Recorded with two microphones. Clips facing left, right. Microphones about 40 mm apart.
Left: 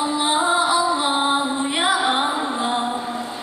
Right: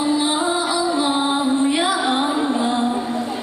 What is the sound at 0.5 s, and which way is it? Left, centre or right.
Music, left.